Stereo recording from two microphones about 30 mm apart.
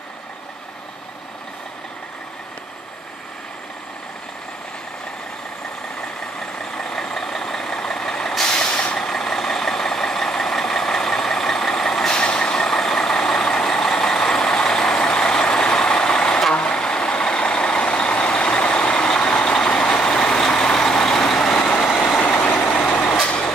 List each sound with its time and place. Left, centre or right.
6.4 s vehicle: left
8.5 s vehicle: left
8.9 s vehicle: centre
12.1 s vehicle: left
12.7 s vehicle: centre
22.2 s vehicle: left
23.2 s vehicle: left